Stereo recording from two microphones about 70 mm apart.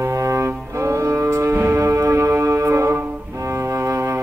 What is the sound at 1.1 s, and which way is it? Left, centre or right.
Music, right.